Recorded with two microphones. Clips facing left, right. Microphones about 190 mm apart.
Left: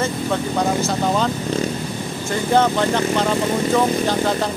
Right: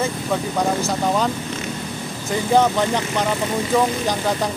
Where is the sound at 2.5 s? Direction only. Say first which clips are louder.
Even; 15° right (ahead or behind).